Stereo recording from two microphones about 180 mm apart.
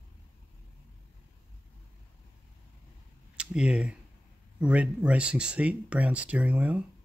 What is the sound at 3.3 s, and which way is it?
Speech, 5° right (ahead or behind).